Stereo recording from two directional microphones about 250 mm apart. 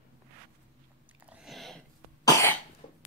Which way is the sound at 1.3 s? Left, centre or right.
Centre.